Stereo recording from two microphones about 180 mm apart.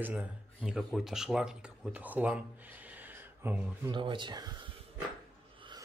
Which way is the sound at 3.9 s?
25° right (ahead or behind).